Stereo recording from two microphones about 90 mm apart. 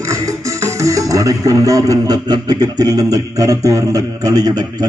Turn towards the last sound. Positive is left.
turn(degrees=-45)  # may be behind; listen again after turning